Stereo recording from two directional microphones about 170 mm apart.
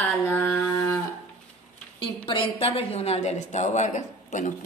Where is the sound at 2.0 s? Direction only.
30° left (ahead or behind).